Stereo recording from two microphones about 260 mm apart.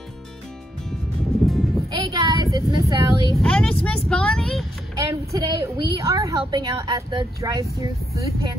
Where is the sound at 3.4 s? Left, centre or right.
Centre.